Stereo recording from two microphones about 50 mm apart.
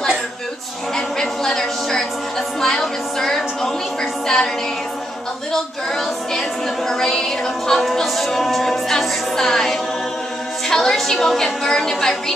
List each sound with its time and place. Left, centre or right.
0.9 s a sound: centre
2.6 s music: centre
5.5 s a capella: centre
10.7 s a woman's voice: centre